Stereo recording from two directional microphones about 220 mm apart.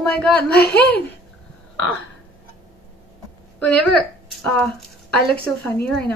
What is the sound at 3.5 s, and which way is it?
Speech, 5° left (ahead or behind).